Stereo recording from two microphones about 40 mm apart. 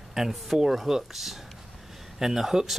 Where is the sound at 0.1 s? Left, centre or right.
Centre.